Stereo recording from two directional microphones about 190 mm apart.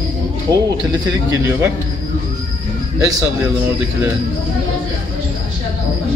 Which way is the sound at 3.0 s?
20° right (ahead or behind).